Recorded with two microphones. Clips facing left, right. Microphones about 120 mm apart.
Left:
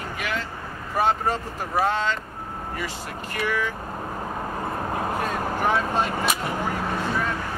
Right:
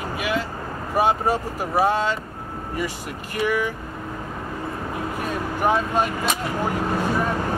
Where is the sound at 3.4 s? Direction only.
15° right (ahead or behind).